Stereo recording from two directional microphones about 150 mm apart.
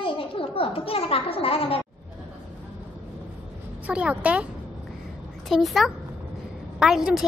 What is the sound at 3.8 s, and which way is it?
A woman's voice, 10° right (ahead or behind).